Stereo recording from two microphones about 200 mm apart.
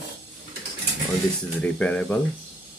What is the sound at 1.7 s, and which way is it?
Speech, 5° left (ahead or behind).